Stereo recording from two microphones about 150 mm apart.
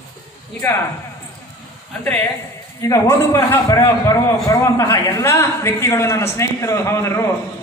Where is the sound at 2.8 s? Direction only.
20° left (ahead or behind).